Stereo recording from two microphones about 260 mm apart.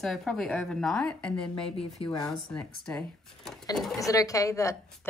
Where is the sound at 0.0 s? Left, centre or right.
Centre.